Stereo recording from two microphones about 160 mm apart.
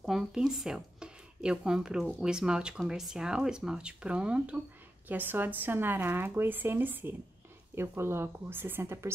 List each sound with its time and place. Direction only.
0.0 s speech: 5° right (ahead or behind)